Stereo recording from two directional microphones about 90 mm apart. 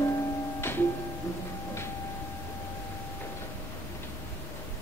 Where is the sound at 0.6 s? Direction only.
25° left (ahead or behind).